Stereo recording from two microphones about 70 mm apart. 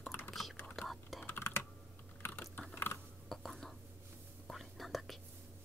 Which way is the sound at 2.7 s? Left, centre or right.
Left.